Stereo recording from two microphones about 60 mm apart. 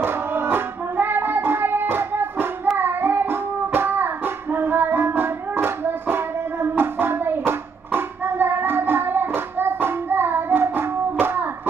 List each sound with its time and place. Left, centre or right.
0.0 s music: right
2.8 s child singing: right
6.8 s hands: right